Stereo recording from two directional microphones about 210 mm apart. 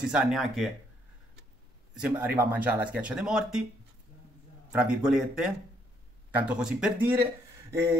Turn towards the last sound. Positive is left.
turn(degrees=-10)  # may be behind; listen again after turning